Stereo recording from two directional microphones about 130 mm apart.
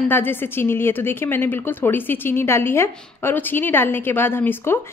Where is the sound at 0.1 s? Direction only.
15° left (ahead or behind).